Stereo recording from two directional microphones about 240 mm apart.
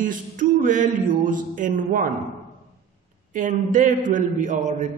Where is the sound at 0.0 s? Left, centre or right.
Right.